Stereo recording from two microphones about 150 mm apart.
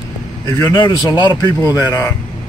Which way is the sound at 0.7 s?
25° left (ahead or behind).